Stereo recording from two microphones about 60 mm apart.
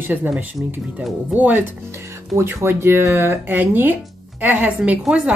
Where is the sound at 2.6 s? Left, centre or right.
Right.